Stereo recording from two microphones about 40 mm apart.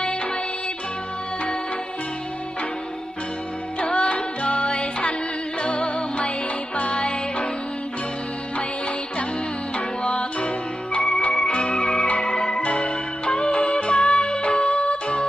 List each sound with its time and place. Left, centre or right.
3.8 s music: left
9.8 s music: left